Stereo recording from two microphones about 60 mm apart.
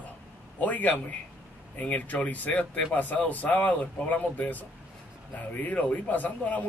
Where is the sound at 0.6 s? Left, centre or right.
Left.